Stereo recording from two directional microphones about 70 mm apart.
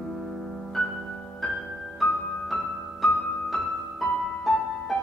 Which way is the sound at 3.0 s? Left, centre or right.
Centre.